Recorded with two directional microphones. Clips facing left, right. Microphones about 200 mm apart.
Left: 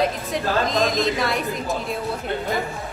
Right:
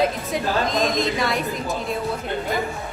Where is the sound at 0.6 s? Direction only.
Centre (ahead or behind).